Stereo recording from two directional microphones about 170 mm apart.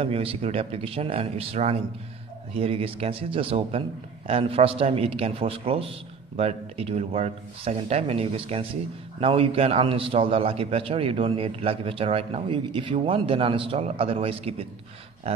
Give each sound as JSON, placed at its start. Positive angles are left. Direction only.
{"t": 0.0, "sound": "a man's voice", "side_deg": -35}